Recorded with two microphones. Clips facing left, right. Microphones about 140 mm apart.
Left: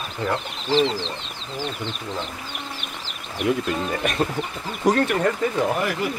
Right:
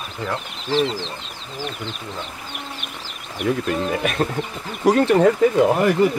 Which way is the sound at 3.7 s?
5° right (ahead or behind).